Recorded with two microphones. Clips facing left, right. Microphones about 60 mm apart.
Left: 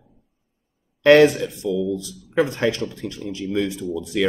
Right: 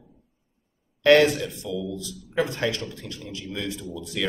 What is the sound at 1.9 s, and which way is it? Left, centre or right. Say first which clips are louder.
Speech: left 5 dB; left.